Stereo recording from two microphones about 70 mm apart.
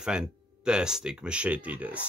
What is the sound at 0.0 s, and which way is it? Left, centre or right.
Speech, centre.